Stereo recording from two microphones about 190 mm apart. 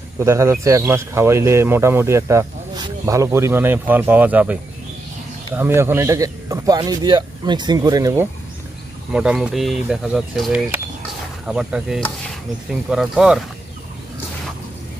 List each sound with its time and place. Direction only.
0.2 s speech: 15° right (ahead or behind)
9.1 s speech: 5° right (ahead or behind)